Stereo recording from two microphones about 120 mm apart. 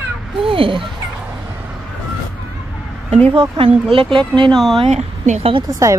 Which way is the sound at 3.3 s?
45° right (ahead or behind).